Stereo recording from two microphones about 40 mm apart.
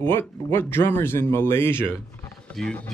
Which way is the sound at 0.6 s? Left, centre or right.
Left.